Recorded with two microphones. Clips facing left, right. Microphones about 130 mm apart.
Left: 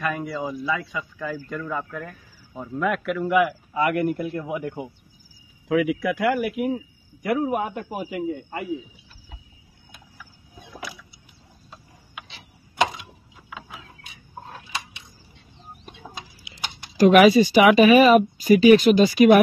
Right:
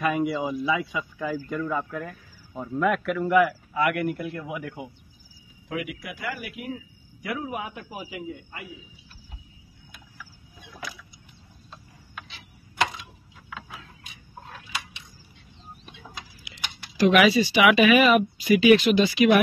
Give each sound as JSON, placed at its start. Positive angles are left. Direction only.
{"t": 0.0, "sound": "speech", "side_deg": -10}
{"t": 3.7, "sound": "a man's voice", "side_deg": 30}
{"t": 5.7, "sound": "speech", "side_deg": 75}
{"t": 7.2, "sound": "a man's voice", "side_deg": 45}
{"t": 12.3, "sound": "clock", "side_deg": 25}
{"t": 13.5, "sound": "mechanisms", "side_deg": 5}
{"t": 16.5, "sound": "speech", "side_deg": 35}